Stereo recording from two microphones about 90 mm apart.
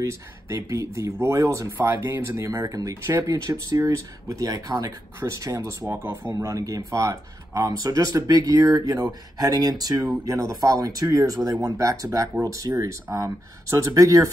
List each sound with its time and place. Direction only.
0.0 s speech: 35° right (ahead or behind)